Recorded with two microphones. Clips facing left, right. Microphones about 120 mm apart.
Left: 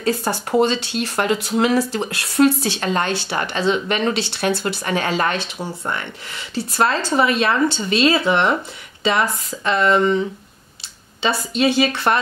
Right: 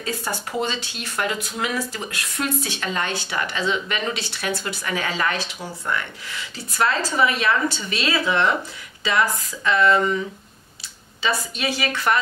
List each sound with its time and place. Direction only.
0.3 s speech: 40° left (ahead or behind)
11.2 s speech: 30° left (ahead or behind)